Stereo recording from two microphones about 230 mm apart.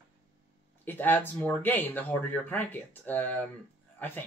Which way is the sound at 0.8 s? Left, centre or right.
Centre.